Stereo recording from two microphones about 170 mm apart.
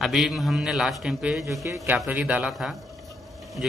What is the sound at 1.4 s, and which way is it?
A man's voice, 15° right (ahead or behind).